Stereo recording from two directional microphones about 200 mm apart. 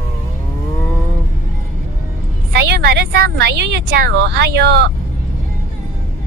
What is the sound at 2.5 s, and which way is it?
Speech, 55° right (ahead or behind).